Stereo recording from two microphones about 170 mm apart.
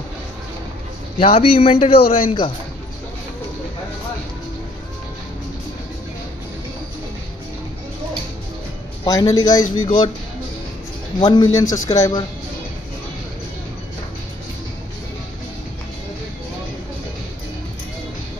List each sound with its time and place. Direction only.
1.2 s a man's voice: 35° left (ahead or behind)
9.0 s a man's voice: 20° left (ahead or behind)
11.1 s a man's voice: 25° left (ahead or behind)